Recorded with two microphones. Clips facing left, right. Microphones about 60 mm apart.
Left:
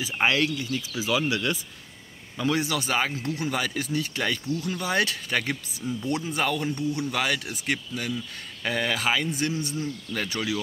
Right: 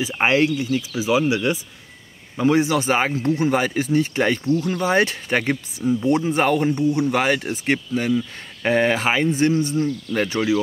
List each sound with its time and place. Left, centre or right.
0.0 s speech: right